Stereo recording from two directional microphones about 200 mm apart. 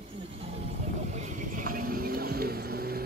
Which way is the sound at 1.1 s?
35° right (ahead or behind).